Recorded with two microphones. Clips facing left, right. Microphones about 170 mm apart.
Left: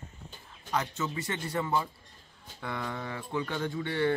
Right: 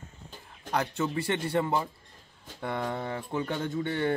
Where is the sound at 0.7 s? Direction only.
60° right (ahead or behind).